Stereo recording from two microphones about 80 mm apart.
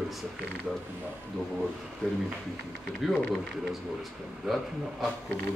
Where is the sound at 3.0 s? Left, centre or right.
Centre.